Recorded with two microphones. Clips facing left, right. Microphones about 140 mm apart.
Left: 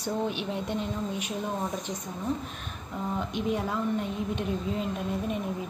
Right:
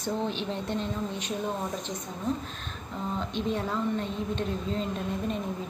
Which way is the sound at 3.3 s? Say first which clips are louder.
Even; 10° left (ahead or behind).